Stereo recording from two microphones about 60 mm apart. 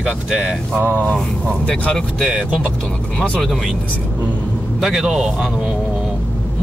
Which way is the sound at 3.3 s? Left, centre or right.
Centre.